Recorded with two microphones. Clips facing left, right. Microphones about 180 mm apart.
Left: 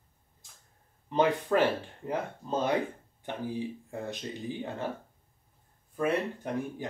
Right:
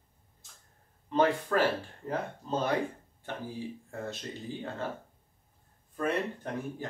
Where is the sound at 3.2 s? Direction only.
20° left (ahead or behind).